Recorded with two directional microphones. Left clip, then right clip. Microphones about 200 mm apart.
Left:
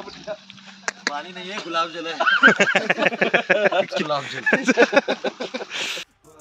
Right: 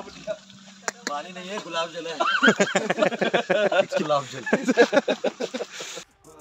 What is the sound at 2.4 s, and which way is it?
Speech, 10° right (ahead or behind).